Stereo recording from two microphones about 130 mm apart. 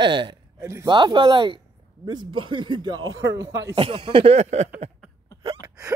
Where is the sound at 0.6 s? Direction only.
20° right (ahead or behind).